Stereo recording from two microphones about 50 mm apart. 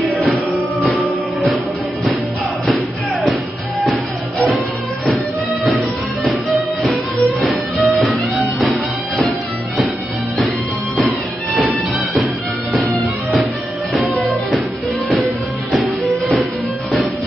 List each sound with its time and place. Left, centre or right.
0.1 s music: centre
2.6 s music: centre
7.3 s music: centre